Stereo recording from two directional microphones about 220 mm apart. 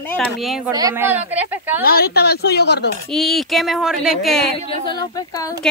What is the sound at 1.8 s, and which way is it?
A woman's voice, 45° left (ahead or behind).